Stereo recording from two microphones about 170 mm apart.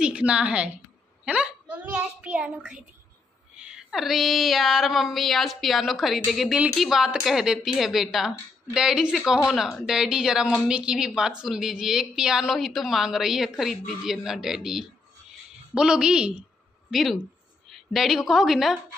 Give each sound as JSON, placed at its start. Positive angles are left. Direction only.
{"t": 0.0, "sound": "a woman's voice", "side_deg": -5}
{"t": 3.5, "sound": "a sound", "side_deg": -5}
{"t": 17.6, "sound": "a woman's voice", "side_deg": 0}